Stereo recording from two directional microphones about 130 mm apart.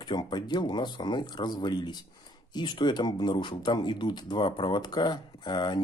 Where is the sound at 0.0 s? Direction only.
35° left (ahead or behind).